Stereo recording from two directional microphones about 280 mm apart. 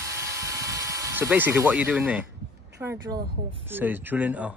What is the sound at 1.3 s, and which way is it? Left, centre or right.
Speech, centre.